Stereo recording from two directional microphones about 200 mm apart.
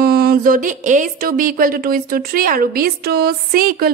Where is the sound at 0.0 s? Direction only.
50° right (ahead or behind).